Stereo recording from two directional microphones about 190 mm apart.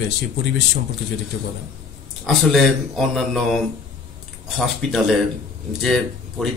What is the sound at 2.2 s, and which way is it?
Speech, centre (ahead or behind).